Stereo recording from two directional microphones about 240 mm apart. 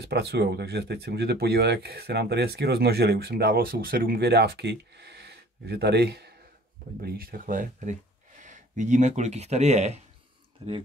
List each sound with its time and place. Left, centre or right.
0.0 s speech: right